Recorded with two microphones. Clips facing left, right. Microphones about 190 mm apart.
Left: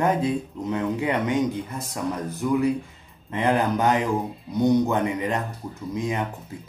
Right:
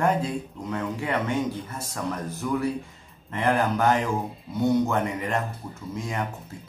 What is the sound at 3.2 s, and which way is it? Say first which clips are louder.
Speech: left 2 dB; 20° left (ahead or behind).